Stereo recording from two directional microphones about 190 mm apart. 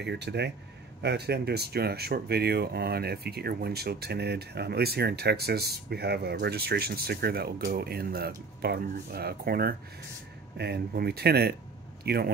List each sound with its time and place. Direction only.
0.0 s a man's voice: 65° right (ahead or behind)